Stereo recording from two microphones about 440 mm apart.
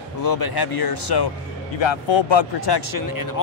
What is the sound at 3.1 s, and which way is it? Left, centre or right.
Speech, left.